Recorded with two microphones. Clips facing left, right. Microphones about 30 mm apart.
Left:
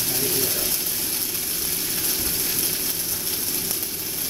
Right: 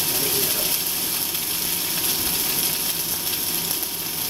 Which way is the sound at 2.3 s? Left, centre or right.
Right.